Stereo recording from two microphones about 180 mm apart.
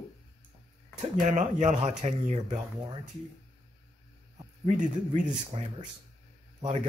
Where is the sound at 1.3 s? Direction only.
40° right (ahead or behind).